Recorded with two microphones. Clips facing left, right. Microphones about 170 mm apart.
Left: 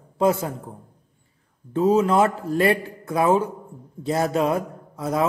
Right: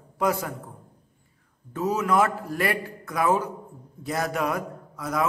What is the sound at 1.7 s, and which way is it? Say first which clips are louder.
A man's voice: left 6 dB; 30° left (ahead or behind).